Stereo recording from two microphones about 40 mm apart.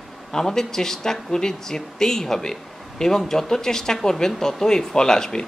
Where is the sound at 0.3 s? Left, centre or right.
Centre.